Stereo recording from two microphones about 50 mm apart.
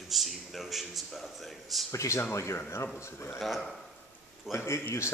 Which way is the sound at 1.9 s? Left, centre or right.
Left.